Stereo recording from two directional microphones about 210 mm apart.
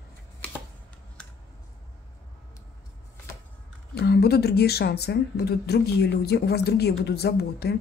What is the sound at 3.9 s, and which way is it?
Speech, 50° left (ahead or behind).